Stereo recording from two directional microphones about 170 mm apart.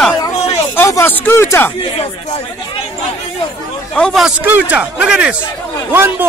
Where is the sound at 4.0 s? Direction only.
Centre (ahead or behind).